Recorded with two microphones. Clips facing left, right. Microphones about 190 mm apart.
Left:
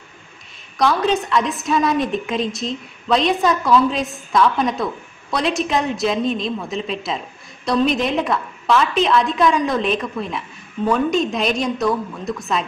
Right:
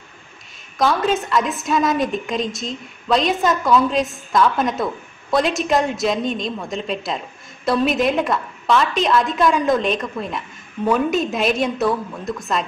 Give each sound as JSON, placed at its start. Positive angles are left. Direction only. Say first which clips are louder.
{"t": 0.7, "sound": "a woman's voice", "louder": "left 1 dB", "side_deg": 0}